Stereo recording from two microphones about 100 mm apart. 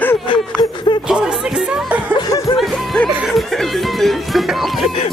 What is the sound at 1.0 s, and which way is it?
Music, 10° right (ahead or behind).